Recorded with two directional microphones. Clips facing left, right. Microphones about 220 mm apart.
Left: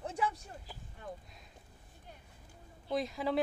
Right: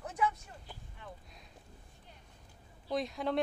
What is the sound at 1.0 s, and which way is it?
Speech, 40° left (ahead or behind).